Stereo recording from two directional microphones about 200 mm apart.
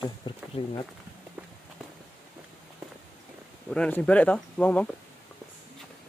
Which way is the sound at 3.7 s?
5° left (ahead or behind).